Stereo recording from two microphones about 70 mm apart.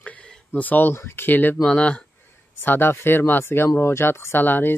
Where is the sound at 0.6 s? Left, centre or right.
Left.